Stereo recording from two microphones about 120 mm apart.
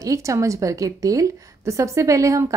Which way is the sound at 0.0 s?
25° right (ahead or behind).